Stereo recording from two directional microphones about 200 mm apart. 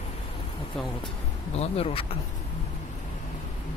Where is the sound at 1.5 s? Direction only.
30° left (ahead or behind).